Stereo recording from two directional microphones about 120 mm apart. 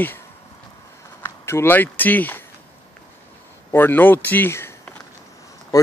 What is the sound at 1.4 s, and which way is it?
Speech, 20° left (ahead or behind).